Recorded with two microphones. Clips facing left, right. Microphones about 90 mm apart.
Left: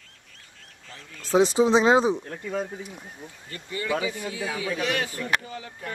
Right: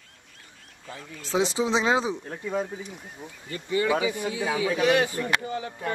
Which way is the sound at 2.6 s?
Centre (ahead or behind).